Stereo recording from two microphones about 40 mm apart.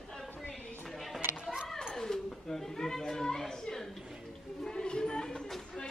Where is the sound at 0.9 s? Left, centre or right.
Centre.